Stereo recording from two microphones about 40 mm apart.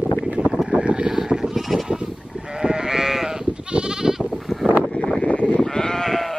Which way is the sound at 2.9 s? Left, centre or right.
Centre.